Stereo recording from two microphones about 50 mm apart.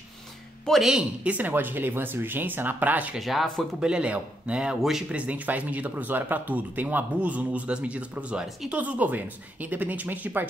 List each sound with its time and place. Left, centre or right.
0.7 s a woman's voice: centre
1.2 s speech: right
1.5 s speech: right
3.2 s speech: centre
3.8 s speech: right